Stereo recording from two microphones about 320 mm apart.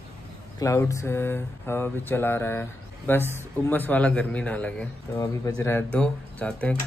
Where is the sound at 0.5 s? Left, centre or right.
Centre.